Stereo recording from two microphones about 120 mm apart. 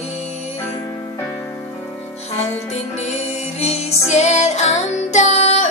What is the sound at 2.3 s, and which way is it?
Music, 65° left (ahead or behind).